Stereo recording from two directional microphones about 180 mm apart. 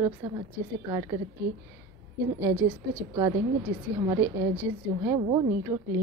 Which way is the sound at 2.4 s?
10° right (ahead or behind).